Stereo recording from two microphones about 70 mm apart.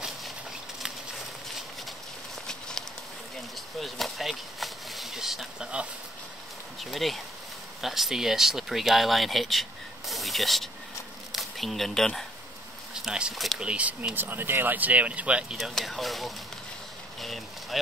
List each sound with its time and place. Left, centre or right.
0.8 s clip-clop: centre
3.8 s a sound: centre
6.8 s speech: centre
13.0 s speech: centre
13.7 s speech: centre
14.1 s speech: right
15.5 s speech: centre